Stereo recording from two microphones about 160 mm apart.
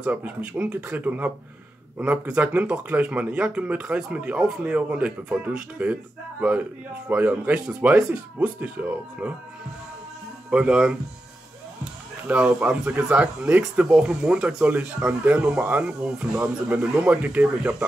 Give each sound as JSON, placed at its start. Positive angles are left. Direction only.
{"t": 0.0, "sound": "speech", "side_deg": -10}
{"t": 7.1, "sound": "speech", "side_deg": -10}
{"t": 10.5, "sound": "speech", "side_deg": -5}
{"t": 12.3, "sound": "speech", "side_deg": -5}